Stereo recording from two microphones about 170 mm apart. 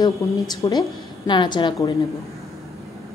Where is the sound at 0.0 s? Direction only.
20° left (ahead or behind).